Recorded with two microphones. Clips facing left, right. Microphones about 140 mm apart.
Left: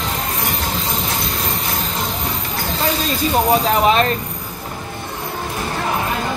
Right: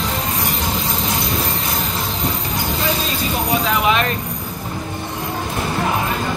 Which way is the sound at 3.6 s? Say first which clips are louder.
Left 3 dB; 35° left (ahead or behind).